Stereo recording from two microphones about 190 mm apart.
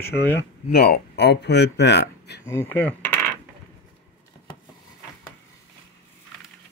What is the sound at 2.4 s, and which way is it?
Speech, 10° left (ahead or behind).